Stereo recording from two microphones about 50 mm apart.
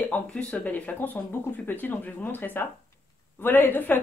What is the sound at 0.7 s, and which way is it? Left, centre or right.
A woman's voice, left.